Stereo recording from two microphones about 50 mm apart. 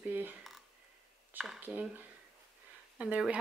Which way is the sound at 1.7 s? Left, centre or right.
Right.